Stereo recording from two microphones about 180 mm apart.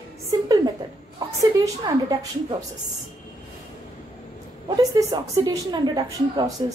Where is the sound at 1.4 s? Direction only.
20° right (ahead or behind).